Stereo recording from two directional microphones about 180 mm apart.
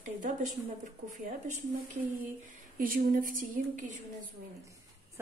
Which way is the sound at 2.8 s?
50° right (ahead or behind).